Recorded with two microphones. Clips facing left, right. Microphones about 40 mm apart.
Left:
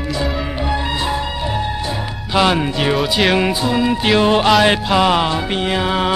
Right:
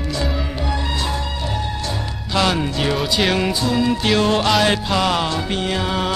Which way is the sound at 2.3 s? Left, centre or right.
Centre.